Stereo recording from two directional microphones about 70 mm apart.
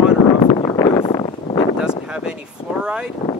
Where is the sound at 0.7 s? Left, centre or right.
Left.